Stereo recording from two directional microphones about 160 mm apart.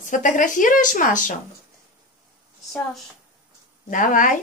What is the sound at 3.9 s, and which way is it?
Speech, 55° left (ahead or behind).